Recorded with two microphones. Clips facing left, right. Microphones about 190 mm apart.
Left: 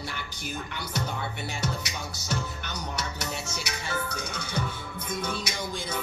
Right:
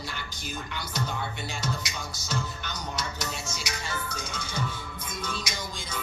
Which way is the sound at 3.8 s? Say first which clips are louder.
Left 5 dB; 60° left (ahead or behind).